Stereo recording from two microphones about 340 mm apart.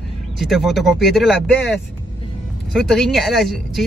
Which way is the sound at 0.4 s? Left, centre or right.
Centre.